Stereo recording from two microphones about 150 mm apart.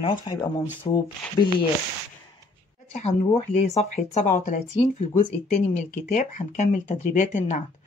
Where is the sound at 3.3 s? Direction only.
45° left (ahead or behind).